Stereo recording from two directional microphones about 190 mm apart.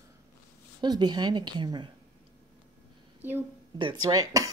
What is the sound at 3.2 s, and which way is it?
A woman's voice, 10° right (ahead or behind).